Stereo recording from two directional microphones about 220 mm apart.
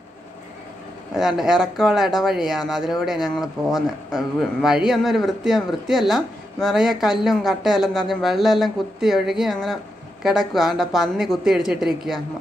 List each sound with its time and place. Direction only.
1.1 s speech: centre (ahead or behind)